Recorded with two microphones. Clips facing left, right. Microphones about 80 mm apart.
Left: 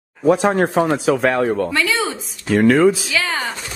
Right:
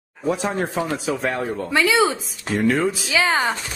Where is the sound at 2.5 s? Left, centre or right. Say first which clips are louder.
Left 6 dB; left.